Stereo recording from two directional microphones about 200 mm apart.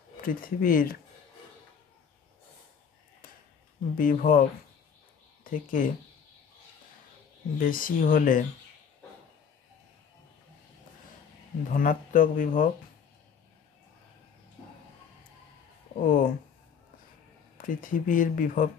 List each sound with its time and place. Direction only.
0.3 s speech: 45° left (ahead or behind)
3.9 s speech: 45° left (ahead or behind)
7.5 s speech: 45° left (ahead or behind)
11.7 s speech: 45° left (ahead or behind)
16.0 s speech: 45° left (ahead or behind)
17.6 s speech: 40° left (ahead or behind)